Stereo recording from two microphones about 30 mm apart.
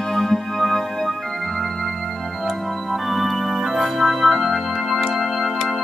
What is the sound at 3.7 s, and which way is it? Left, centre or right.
Music, centre.